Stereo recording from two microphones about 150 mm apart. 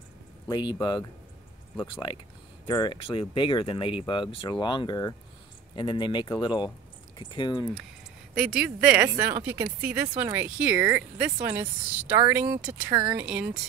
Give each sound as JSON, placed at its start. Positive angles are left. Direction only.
{"t": 0.5, "sound": "speech", "side_deg": 30}
{"t": 8.4, "sound": "speech", "side_deg": -5}